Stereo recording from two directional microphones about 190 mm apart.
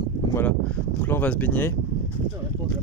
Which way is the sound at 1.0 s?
10° left (ahead or behind).